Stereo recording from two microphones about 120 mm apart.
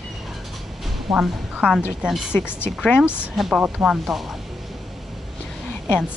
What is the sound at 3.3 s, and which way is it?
Speech, centre (ahead or behind).